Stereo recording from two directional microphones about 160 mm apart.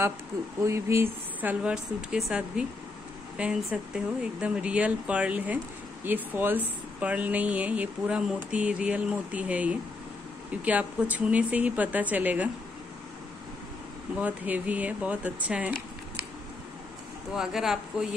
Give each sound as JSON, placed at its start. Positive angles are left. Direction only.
{"t": 0.6, "sound": "speech", "side_deg": -15}
{"t": 14.2, "sound": "speech", "side_deg": -10}
{"t": 17.4, "sound": "speech", "side_deg": -5}